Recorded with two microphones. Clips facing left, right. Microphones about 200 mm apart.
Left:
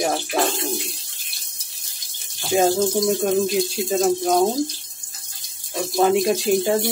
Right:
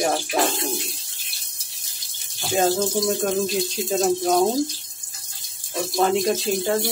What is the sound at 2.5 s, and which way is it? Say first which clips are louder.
Speech: left 3 dB; 10° left (ahead or behind).